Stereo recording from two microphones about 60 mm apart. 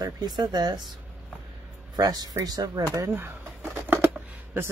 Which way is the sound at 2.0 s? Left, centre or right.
Right.